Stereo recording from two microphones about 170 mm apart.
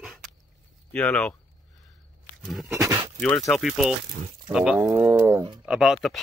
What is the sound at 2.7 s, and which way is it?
Speech, 20° right (ahead or behind).